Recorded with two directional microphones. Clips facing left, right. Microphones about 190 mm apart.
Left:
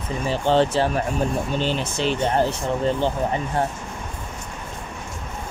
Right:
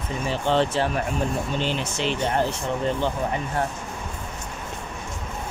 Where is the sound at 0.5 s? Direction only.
35° left (ahead or behind).